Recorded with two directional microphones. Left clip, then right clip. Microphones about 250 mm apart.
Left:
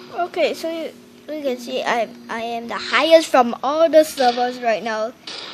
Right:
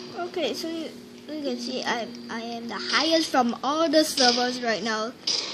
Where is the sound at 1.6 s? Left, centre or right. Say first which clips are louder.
Left 9 dB; left.